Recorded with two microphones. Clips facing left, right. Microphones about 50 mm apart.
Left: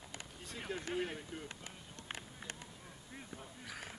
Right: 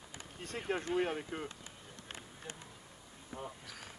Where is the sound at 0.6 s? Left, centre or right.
Right.